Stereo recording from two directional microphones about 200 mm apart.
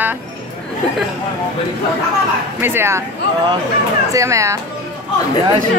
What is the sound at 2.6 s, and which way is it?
Speech, 10° right (ahead or behind).